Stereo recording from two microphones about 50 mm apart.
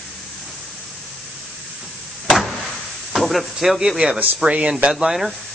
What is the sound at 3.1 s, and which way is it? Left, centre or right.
Speech, centre.